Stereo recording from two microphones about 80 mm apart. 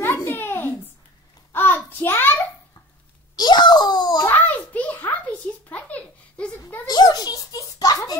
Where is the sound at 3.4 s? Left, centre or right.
Left.